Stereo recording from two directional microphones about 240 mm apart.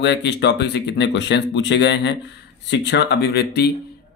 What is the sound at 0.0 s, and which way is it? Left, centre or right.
Speech, left.